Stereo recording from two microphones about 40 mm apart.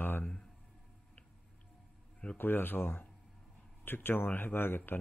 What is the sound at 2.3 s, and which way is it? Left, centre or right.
Speech, left.